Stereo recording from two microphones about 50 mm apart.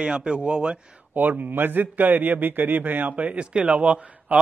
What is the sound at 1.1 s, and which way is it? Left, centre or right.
A man's voice, right.